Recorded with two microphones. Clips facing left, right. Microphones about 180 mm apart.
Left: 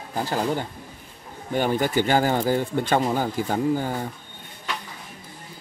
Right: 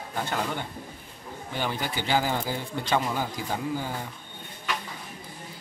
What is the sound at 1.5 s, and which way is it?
Speech, 50° left (ahead or behind).